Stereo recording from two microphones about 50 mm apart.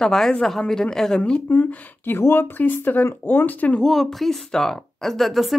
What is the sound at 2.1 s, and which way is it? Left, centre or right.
Speech, left.